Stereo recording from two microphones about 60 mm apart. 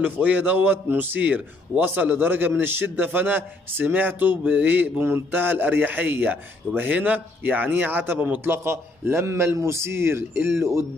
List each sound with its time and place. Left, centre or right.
0.0 s a man's voice: right